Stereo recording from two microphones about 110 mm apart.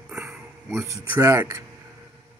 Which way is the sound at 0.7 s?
30° right (ahead or behind).